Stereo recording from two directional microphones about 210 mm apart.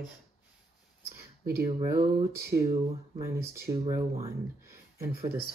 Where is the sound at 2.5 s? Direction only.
15° right (ahead or behind).